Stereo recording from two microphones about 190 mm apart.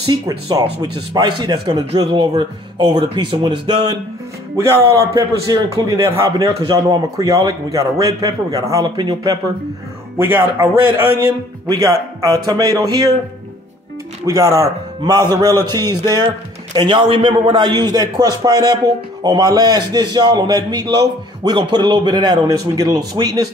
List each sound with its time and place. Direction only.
0.0 s a man's voice: 20° right (ahead or behind)
5.1 s a man's voice: 20° right (ahead or behind)
14.2 s a man's voice: 20° right (ahead or behind)